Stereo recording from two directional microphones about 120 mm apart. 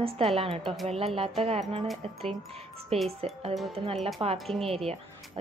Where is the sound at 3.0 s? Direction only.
60° right (ahead or behind).